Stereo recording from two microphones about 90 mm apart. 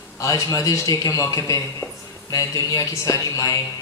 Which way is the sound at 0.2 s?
35° left (ahead or behind).